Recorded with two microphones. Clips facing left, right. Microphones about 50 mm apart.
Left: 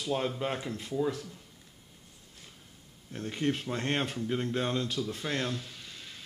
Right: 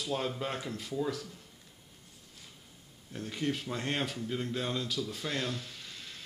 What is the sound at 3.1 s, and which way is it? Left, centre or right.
Speech, left.